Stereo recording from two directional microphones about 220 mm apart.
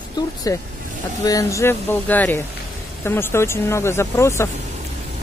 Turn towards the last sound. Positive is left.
turn(degrees=10)  # may be behind; listen again after turning